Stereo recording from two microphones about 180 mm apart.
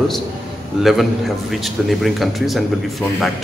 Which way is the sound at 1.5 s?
Centre (ahead or behind).